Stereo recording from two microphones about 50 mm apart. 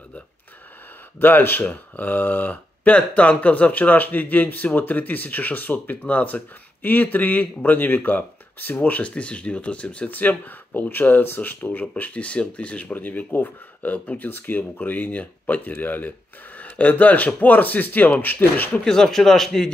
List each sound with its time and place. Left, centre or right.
1.2 s speech: left
9.0 s speech: left
12.0 s speech: left
12.9 s speech: left
18.9 s a man's voice: centre